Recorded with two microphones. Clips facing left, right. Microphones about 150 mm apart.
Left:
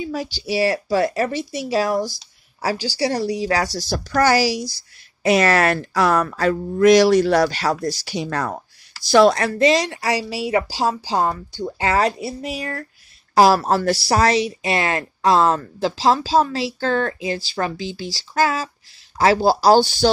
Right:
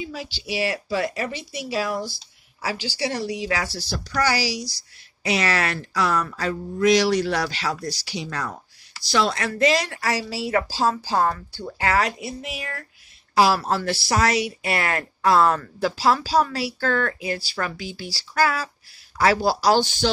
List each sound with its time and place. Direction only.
0.0 s a woman's voice: 45° left (ahead or behind)
9.6 s a woman's voice: 20° left (ahead or behind)